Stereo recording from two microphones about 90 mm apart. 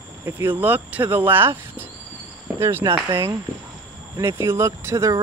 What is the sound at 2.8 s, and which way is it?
Speech, 60° right (ahead or behind).